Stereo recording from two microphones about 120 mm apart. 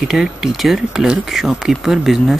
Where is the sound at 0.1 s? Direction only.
Centre (ahead or behind).